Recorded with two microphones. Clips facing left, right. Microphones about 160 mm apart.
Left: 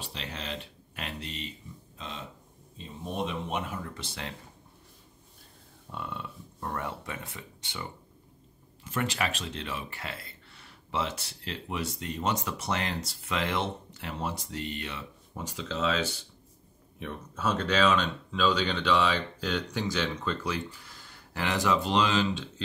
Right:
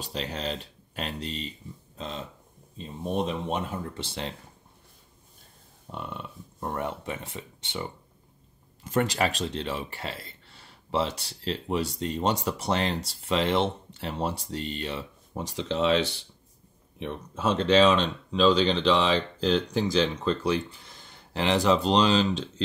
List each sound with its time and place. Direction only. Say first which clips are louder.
0.0 s speech: right 7 dB; 35° right (ahead or behind)
5.9 s speech: right 1 dB; 20° right (ahead or behind)
8.8 s speech: right 6 dB; 40° right (ahead or behind)
17.0 s speech: right 3 dB; 25° right (ahead or behind)